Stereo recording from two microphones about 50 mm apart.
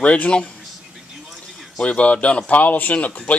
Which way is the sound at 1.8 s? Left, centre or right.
Left.